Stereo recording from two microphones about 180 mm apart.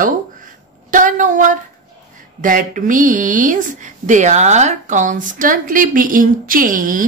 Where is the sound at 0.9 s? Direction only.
45° right (ahead or behind).